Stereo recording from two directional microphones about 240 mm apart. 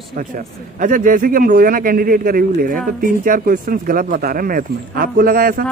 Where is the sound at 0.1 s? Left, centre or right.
Right.